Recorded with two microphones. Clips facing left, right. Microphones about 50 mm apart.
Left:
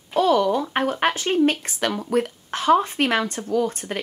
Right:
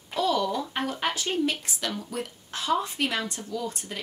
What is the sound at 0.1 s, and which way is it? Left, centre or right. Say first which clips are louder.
A woman's voice: left 7 dB; left.